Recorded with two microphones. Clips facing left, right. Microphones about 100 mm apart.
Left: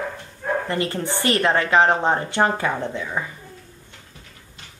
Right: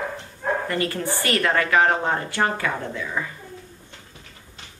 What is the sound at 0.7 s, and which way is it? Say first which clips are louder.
A woman's voice: left 1 dB; 25° left (ahead or behind).